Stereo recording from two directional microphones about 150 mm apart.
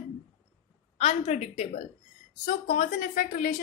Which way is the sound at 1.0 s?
45° left (ahead or behind).